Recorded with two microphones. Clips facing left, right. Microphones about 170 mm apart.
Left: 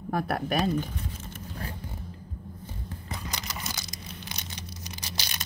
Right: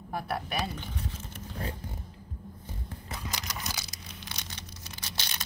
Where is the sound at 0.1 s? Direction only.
50° left (ahead or behind).